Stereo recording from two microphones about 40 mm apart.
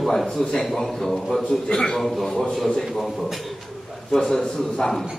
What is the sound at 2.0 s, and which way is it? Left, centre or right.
Speech, centre.